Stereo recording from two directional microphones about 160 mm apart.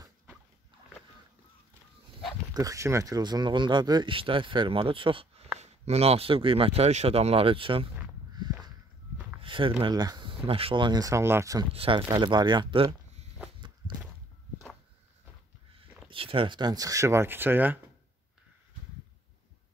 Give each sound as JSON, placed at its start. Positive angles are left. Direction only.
{"t": 2.5, "sound": "speech", "side_deg": -20}
{"t": 9.4, "sound": "speech", "side_deg": -35}
{"t": 11.7, "sound": "speech", "side_deg": -35}
{"t": 16.1, "sound": "speech", "side_deg": -35}